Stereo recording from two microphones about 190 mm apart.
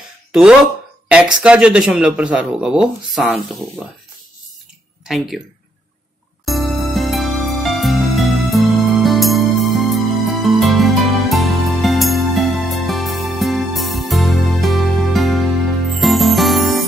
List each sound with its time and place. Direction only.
0.3 s speech: 5° right (ahead or behind)
5.0 s speech: centre (ahead or behind)
6.4 s music: centre (ahead or behind)